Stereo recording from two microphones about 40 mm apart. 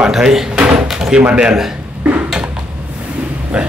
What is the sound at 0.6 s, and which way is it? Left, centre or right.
Speech, right.